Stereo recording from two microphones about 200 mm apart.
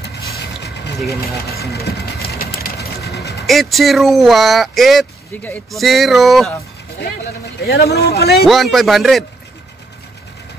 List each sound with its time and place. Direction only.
1.6 s a sound: 50° left (ahead or behind)
3.4 s speech: centre (ahead or behind)
7.5 s speech: 50° left (ahead or behind)
8.5 s speech: centre (ahead or behind)